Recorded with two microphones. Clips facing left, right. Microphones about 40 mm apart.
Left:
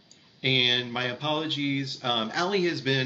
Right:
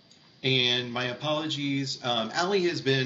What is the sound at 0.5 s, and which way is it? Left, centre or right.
Speech, centre.